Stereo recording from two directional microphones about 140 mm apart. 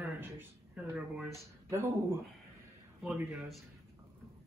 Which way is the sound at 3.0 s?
5° right (ahead or behind).